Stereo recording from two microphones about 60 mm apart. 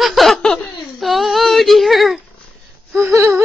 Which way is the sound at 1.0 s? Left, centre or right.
Centre.